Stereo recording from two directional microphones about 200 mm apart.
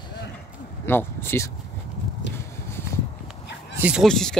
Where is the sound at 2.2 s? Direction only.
65° left (ahead or behind).